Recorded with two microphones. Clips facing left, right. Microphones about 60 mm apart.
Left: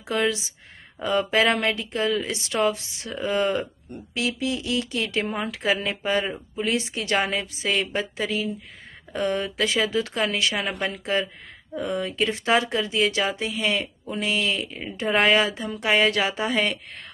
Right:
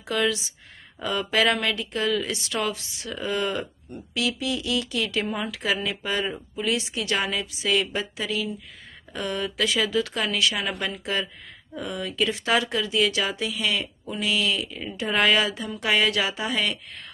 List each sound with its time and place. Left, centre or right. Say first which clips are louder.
0.1 s speech: left 1 dB; left
6.2 s speech: even; left